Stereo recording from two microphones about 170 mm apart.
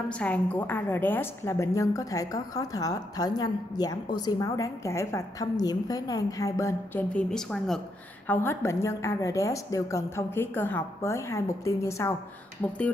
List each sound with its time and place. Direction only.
0.1 s a woman's voice: 10° left (ahead or behind)
8.3 s a woman's voice: 10° left (ahead or behind)